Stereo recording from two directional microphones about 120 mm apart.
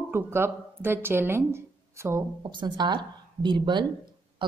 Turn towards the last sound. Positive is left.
turn(degrees=-40)  # may be behind; listen again after turning